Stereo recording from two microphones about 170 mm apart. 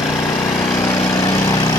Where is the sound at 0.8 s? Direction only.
20° left (ahead or behind).